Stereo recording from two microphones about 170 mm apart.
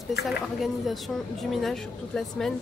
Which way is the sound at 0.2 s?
Centre (ahead or behind).